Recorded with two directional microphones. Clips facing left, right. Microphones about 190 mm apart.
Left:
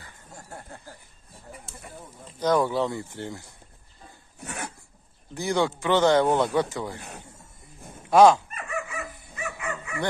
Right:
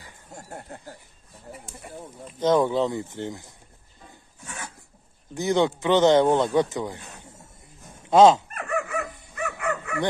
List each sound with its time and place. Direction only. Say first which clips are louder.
0.0 s a sound: right 3 dB; 25° right (ahead or behind)
2.4 s speech: right 2 dB; 20° right (ahead or behind)
4.4 s dog: left 4 dB; 65° left (ahead or behind)
5.3 s speech: right 3 dB; 20° right (ahead or behind)
8.1 s speech: right 1 dB; 20° right (ahead or behind)
8.5 s dog: right 5 dB; 60° right (ahead or behind)